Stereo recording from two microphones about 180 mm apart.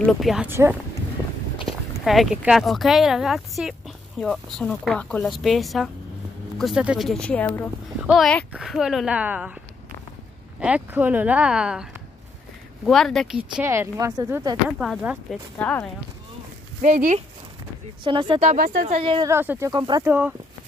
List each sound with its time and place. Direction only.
0.0 s speech: centre (ahead or behind)
0.5 s speech: 15° right (ahead or behind)
1.7 s speech: centre (ahead or behind)
10.6 s speech: 10° right (ahead or behind)
13.4 s speech: 10° right (ahead or behind)
14.8 s speech: 5° right (ahead or behind)
15.6 s speech: 5° left (ahead or behind)
16.8 s speech: 40° right (ahead or behind)
18.0 s speech: 25° right (ahead or behind)
18.5 s speech: 50° right (ahead or behind)
18.9 s speech: 30° right (ahead or behind)
19.2 s speech: 10° right (ahead or behind)
20.1 s speech: 10° right (ahead or behind)